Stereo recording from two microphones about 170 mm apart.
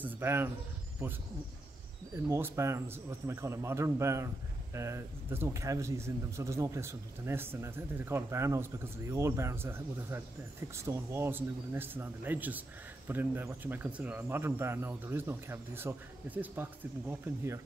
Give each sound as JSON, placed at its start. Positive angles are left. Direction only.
{"t": 0.0, "sound": "speech", "side_deg": -15}